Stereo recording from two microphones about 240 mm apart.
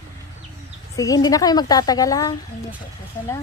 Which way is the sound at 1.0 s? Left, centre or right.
Centre.